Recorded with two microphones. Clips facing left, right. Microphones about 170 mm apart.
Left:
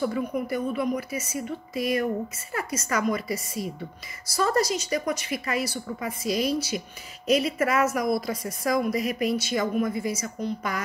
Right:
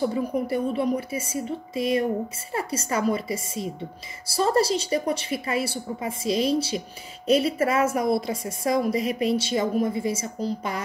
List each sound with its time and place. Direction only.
0.0 s a woman's voice: 30° right (ahead or behind)